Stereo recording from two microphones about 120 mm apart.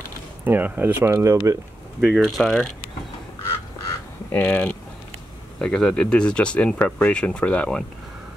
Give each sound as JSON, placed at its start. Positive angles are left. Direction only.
{"t": 0.5, "sound": "speech", "side_deg": -15}
{"t": 2.0, "sound": "speech", "side_deg": -5}
{"t": 4.3, "sound": "speech", "side_deg": 15}